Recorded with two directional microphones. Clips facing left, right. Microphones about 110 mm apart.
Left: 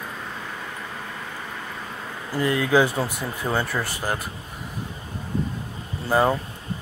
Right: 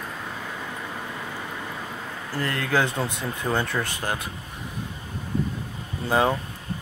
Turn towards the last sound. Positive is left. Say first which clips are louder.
# left 2 dB
turn(degrees=0)  # may be behind; listen again after turning